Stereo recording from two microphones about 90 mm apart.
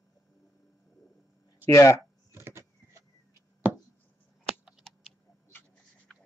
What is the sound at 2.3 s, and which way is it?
Vehicle, 30° right (ahead or behind).